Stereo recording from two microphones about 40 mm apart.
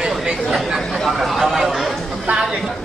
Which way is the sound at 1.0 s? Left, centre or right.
Centre.